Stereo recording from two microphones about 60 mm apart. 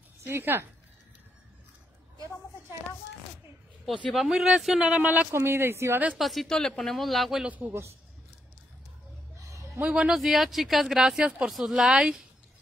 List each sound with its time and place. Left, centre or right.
0.3 s speech: right
4.1 s speech: centre
5.0 s speech: right
5.3 s speech: right
6.1 s speech: centre
7.4 s a man's voice: right
9.8 s speech: centre
10.1 s speech: centre